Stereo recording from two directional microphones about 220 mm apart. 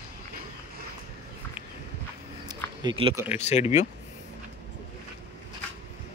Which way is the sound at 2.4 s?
20° right (ahead or behind).